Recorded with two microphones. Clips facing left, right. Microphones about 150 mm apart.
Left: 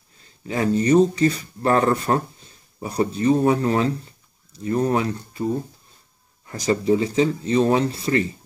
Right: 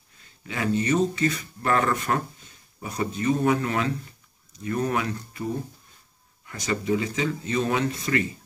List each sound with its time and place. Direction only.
0.5 s speech: 35° left (ahead or behind)
6.4 s speech: 35° left (ahead or behind)